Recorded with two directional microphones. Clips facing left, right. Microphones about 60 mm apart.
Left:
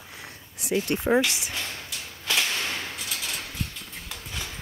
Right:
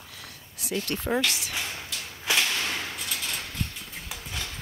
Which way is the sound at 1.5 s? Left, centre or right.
Centre.